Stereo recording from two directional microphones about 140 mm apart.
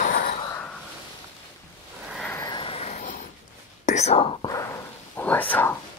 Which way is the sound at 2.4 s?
35° left (ahead or behind).